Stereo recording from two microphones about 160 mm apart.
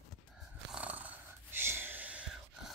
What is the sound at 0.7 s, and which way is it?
Snoring, 10° right (ahead or behind).